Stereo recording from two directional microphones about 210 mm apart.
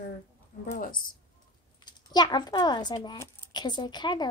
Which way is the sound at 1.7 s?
20° left (ahead or behind).